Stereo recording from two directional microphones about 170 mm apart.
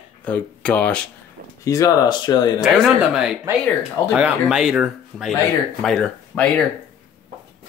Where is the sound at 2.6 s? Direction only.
Centre (ahead or behind).